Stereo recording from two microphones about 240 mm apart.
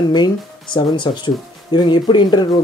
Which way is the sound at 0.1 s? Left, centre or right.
Centre.